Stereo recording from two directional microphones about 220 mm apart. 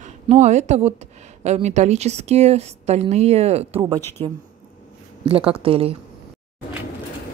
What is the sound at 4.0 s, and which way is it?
Speech, 10° left (ahead or behind).